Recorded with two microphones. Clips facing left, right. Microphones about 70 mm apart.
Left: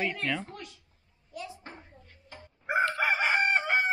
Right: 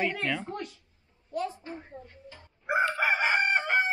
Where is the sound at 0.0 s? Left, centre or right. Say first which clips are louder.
Right 1 dB; centre.